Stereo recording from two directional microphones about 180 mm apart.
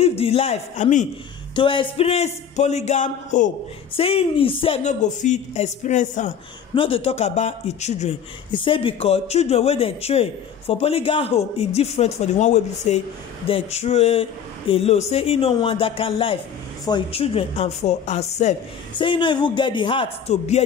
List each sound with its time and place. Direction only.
0.2 s speech: 35° left (ahead or behind)
1.5 s speech: 30° left (ahead or behind); by 3.5 s 45° left (ahead or behind)
3.9 s speech: 30° left (ahead or behind)
6.7 s speech: 30° left (ahead or behind)
8.5 s speech: 30° left (ahead or behind)
18.9 s speech: 25° left (ahead or behind)